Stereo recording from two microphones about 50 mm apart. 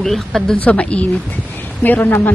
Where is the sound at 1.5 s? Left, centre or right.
Left.